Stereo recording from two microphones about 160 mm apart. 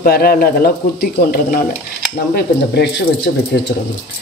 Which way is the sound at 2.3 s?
90° left.